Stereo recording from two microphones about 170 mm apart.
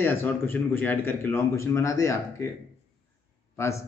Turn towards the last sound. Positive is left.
turn(degrees=15)  # may be behind; listen again after turning